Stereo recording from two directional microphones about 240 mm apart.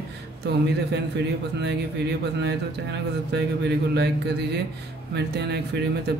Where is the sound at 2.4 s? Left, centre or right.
Right.